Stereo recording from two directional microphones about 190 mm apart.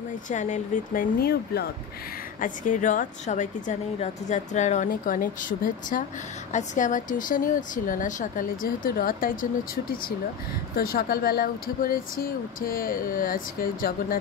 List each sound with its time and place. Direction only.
0.3 s a woman's voice: 40° left (ahead or behind); by 1.7 s 55° left (ahead or behind)
2.4 s a woman's voice: 45° left (ahead or behind)
10.8 s a woman's voice: 50° left (ahead or behind)